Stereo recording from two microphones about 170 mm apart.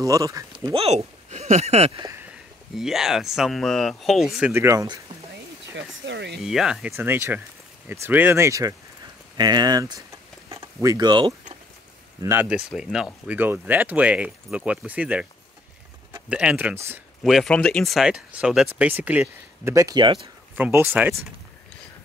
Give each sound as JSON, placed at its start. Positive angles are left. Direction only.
{"t": 0.0, "sound": "speech", "side_deg": -20}
{"t": 0.7, "sound": "speech", "side_deg": -40}
{"t": 2.7, "sound": "speech", "side_deg": 0}
{"t": 4.5, "sound": "speech", "side_deg": -15}
{"t": 5.8, "sound": "speech", "side_deg": -90}
{"t": 6.4, "sound": "speech", "side_deg": -5}
{"t": 12.2, "sound": "speech", "side_deg": -15}
{"t": 16.3, "sound": "speech", "side_deg": -5}
{"t": 17.2, "sound": "speech", "side_deg": 0}
{"t": 20.5, "sound": "speech", "side_deg": -10}